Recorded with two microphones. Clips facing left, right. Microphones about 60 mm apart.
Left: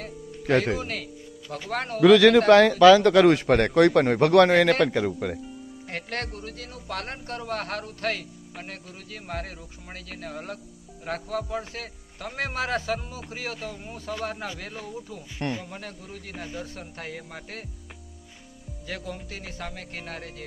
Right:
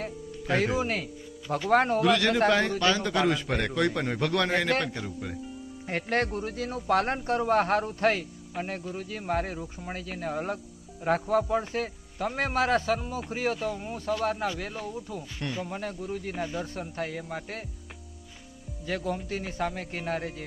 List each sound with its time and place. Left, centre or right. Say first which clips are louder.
0.4 s speech: left 4 dB; left
0.7 s speech: right 3 dB; right
2.2 s a man's voice: left 8 dB; left
5.9 s a man's voice: right 5 dB; centre
18.9 s a man's voice: right 5 dB; centre